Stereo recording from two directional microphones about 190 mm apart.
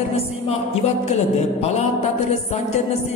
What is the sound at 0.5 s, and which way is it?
Music, 35° left (ahead or behind).